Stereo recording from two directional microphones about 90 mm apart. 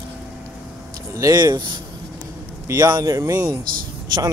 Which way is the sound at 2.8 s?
45° right (ahead or behind).